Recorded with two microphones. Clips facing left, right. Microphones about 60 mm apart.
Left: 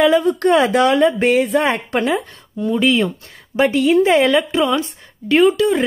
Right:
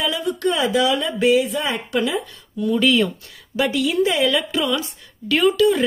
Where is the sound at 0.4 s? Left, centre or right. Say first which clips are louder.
Left 5 dB; left.